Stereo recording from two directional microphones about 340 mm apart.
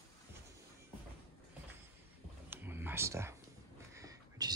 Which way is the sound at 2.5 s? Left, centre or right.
Centre.